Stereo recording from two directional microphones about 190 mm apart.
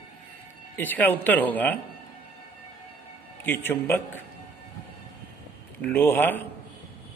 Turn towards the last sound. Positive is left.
turn(degrees=10)  # may be behind; listen again after turning